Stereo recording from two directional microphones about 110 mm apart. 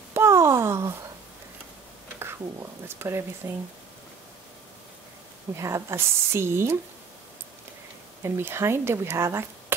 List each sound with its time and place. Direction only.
0.1 s a sound: 25° right (ahead or behind)
2.1 s speech: 20° right (ahead or behind)
5.6 s speech: 25° right (ahead or behind)
8.2 s speech: 25° right (ahead or behind)